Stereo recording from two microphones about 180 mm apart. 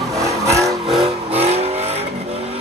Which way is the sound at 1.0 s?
35° right (ahead or behind).